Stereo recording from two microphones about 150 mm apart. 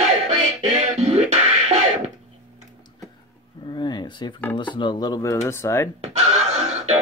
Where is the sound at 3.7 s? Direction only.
30° left (ahead or behind).